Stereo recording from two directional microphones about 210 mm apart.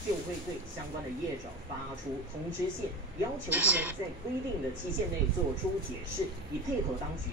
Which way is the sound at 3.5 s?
10° right (ahead or behind).